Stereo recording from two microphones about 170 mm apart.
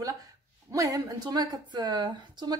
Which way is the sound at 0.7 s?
20° right (ahead or behind).